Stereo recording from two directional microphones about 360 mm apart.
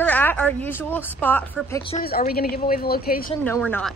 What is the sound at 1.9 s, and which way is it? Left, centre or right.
A woman's voice, left.